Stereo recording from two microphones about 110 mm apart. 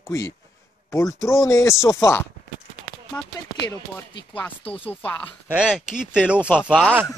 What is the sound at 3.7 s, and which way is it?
Speech, 20° left (ahead or behind).